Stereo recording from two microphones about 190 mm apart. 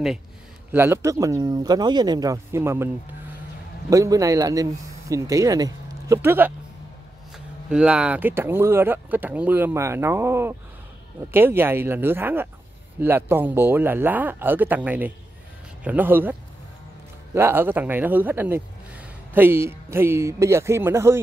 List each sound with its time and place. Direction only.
0.7 s speech: 10° right (ahead or behind)
3.9 s speech: 15° right (ahead or behind)